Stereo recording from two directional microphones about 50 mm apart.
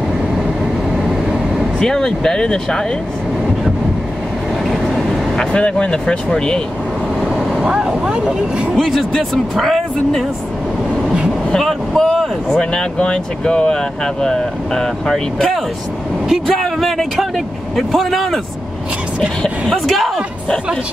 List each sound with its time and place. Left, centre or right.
1.8 s speech: centre
4.6 s vehicle: centre
5.4 s speech: centre
7.6 s speech: centre
8.7 s speech: centre
11.5 s speech: centre
12.4 s speech: centre
19.7 s speech: centre